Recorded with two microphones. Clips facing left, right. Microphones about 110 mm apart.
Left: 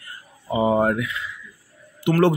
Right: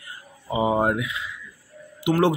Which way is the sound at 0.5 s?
15° right (ahead or behind).